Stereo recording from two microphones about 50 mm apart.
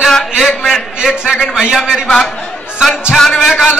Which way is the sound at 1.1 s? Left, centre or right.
Centre.